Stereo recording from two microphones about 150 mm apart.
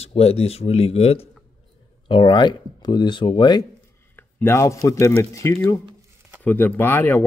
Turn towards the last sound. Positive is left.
turn(degrees=15)  # may be behind; listen again after turning